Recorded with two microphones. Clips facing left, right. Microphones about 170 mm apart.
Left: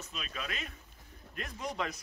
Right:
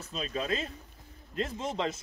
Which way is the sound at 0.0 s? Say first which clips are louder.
Right 8 dB; 30° right (ahead or behind).